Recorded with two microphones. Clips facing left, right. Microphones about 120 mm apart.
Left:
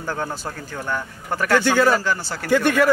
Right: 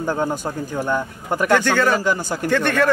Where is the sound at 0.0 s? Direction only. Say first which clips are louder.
Right 5 dB; 15° right (ahead or behind).